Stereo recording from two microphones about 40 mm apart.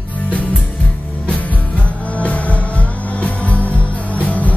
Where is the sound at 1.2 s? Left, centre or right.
Left.